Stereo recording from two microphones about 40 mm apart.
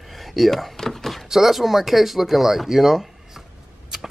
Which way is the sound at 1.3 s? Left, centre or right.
Centre.